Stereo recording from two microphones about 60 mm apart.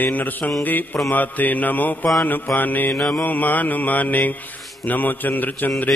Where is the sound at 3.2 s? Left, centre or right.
Left.